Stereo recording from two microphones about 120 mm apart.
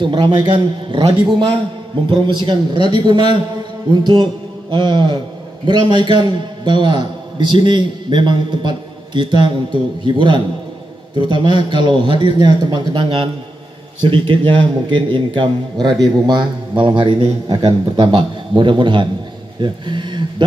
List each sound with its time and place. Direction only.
0.0 s a man's voice: 40° right (ahead or behind)
2.0 s a man's voice: 40° right (ahead or behind)
3.9 s mantra: 40° right (ahead or behind)
5.7 s a man's voice: 40° right (ahead or behind)